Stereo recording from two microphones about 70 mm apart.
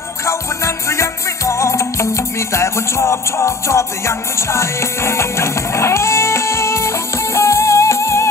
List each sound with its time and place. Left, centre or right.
0.2 s music: left